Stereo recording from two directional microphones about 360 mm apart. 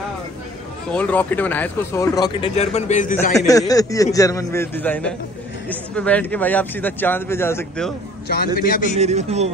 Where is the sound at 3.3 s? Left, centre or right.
Centre.